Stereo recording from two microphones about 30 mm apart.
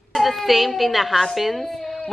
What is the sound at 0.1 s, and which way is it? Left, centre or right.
A woman's voice, centre.